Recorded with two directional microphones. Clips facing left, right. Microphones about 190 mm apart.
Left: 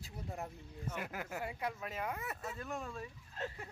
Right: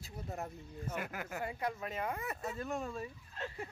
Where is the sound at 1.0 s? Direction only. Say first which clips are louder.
Even; 25° left (ahead or behind).